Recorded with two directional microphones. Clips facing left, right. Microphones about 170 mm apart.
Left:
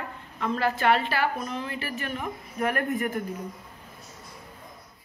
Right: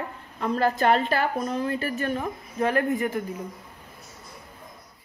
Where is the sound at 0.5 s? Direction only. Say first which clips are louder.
Right 3 dB; 40° right (ahead or behind).